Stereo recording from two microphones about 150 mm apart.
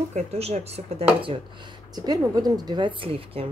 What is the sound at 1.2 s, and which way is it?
A woman's voice, 35° right (ahead or behind).